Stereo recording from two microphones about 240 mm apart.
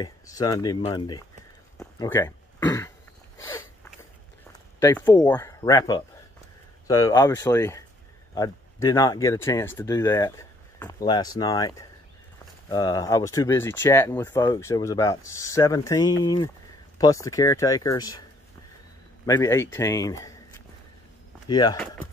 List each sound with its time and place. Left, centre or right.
0.0 s speech: centre
1.8 s throat clearing: centre
4.7 s speech: centre
19.2 s speech: centre
21.5 s speech: centre